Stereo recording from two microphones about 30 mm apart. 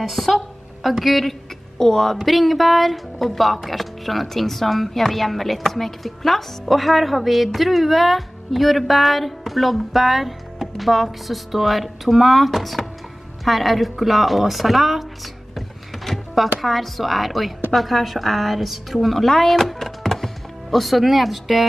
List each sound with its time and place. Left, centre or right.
0.0 s speech: centre
1.8 s speech: centre
2.2 s speech: centre
15.5 s power windows: centre
16.6 s speech: centre